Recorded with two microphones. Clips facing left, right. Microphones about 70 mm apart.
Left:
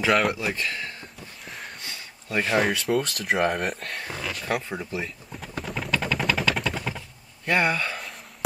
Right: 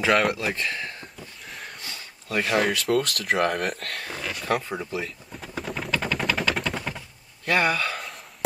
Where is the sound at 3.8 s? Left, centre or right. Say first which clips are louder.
Even; centre.